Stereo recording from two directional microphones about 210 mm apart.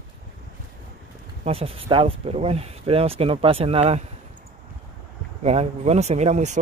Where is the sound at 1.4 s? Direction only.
30° right (ahead or behind).